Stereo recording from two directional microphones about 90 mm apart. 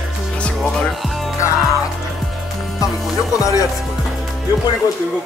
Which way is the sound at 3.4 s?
40° left (ahead or behind).